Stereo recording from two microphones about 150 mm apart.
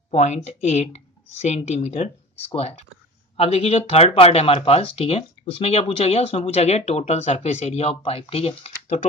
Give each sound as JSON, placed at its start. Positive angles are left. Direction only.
{"t": 0.1, "sound": "speech", "side_deg": 50}